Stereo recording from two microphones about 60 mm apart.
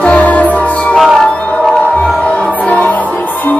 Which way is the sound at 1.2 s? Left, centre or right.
Centre.